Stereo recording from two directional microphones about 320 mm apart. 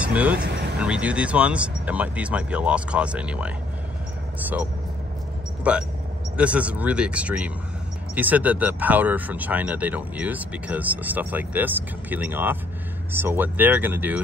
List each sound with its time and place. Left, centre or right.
0.0 s speech: centre
0.5 s vehicle: right
0.7 s speech: centre